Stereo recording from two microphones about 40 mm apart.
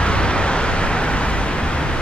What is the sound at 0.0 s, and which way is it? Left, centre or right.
Vehicle, left.